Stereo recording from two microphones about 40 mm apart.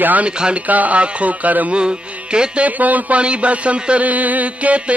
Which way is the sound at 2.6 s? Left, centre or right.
Right.